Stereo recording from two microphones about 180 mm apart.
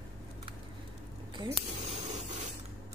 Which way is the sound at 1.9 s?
35° right (ahead or behind).